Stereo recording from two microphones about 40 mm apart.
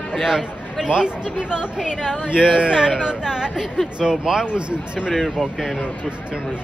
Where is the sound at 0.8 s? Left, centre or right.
Right.